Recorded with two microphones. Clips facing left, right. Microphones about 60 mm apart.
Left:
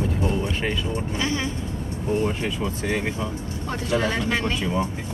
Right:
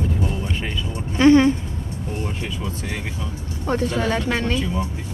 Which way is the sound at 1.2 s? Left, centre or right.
Right.